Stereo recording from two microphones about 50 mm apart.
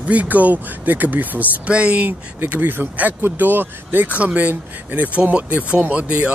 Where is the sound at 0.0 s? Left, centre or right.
Right.